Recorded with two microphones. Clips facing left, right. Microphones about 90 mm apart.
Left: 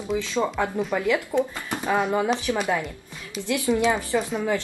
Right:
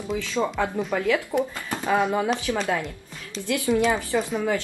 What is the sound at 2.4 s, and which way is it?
A woman's voice, 15° left (ahead or behind).